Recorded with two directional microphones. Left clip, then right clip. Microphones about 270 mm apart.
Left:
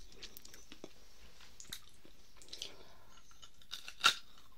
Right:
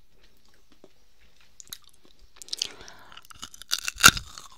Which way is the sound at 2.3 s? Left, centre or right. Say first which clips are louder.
Right 15 dB; right.